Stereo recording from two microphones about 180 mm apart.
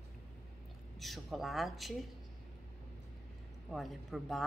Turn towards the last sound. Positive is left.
turn(degrees=0)  # may be behind; listen again after turning